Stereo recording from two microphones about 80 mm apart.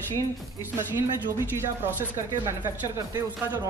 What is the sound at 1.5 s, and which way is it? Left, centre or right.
Speech, right.